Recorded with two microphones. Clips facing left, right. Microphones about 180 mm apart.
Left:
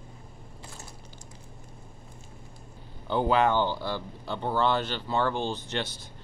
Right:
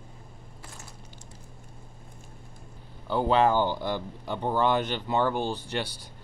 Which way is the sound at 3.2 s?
30° right (ahead or behind).